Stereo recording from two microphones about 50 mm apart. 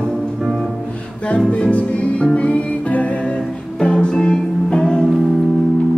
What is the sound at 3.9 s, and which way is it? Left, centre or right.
Music, centre.